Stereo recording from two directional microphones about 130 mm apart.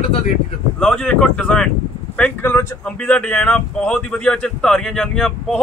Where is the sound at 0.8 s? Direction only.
5° left (ahead or behind).